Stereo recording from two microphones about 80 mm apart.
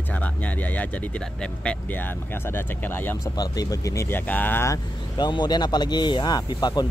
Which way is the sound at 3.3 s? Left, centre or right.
Left.